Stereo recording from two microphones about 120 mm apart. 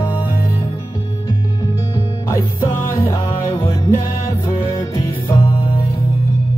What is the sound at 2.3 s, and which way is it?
Music, 30° left (ahead or behind).